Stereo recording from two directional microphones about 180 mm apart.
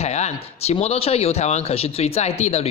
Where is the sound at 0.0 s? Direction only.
35° left (ahead or behind).